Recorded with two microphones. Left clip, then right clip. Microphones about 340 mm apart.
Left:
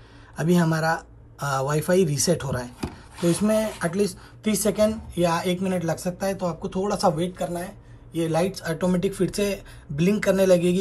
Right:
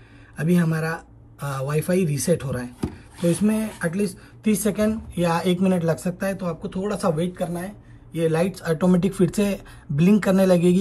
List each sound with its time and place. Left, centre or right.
0.4 s speech: centre